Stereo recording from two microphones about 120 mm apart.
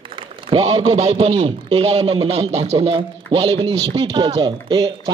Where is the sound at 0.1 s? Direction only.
45° right (ahead or behind).